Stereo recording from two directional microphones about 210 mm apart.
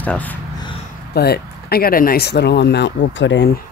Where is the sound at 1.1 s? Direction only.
50° left (ahead or behind).